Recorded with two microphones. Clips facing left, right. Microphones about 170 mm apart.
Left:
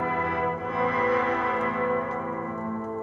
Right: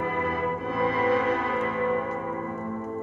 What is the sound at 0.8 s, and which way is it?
Music, 25° right (ahead or behind).